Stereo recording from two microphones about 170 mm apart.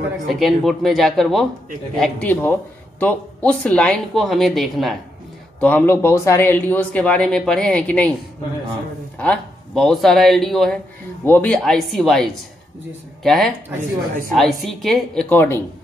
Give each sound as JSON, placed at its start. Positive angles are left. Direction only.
{"t": 0.3, "sound": "speech", "side_deg": 0}
{"t": 9.2, "sound": "a woman's voice", "side_deg": 5}